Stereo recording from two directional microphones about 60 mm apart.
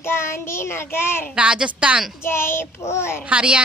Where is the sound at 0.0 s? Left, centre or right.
Left.